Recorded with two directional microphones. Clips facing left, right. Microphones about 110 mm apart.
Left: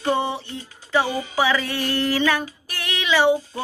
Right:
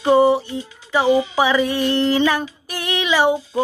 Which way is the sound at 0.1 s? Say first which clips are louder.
Right 10 dB; 35° right (ahead or behind).